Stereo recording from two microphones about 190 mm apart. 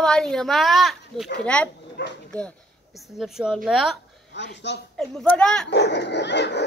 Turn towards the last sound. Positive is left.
turn(degrees=65)  # may be behind; listen again after turning